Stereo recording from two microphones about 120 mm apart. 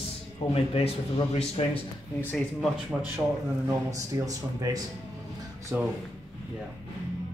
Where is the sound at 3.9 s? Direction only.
30° right (ahead or behind).